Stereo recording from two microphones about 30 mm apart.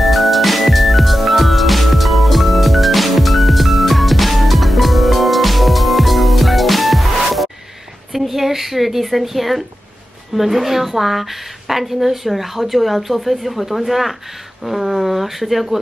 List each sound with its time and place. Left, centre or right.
0.0 s music: centre
10.3 s a woman's voice: centre